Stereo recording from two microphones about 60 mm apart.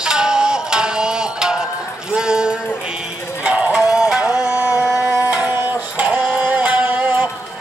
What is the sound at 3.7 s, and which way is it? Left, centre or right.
Music, centre.